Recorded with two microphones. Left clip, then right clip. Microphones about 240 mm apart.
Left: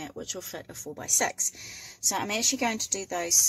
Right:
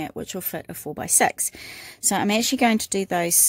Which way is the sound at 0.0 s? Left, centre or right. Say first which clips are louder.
Right 6 dB; right.